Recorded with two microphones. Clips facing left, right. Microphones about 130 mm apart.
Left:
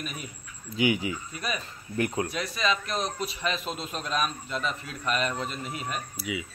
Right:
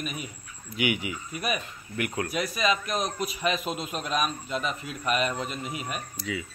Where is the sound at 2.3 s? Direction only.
15° right (ahead or behind).